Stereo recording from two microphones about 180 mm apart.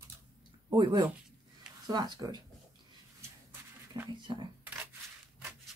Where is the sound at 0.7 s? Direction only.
25° right (ahead or behind).